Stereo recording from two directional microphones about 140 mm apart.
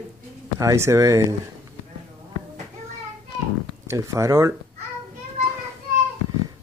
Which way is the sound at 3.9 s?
20° right (ahead or behind).